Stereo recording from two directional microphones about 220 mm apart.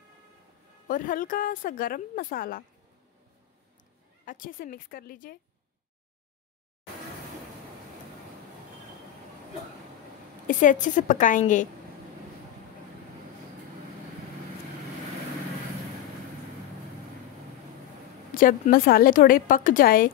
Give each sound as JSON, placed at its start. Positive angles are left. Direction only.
{"t": 0.8, "sound": "a woman's voice", "side_deg": 40}
{"t": 4.3, "sound": "a woman's voice", "side_deg": 40}
{"t": 10.4, "sound": "a woman's voice", "side_deg": 35}
{"t": 18.3, "sound": "a woman's voice", "side_deg": 40}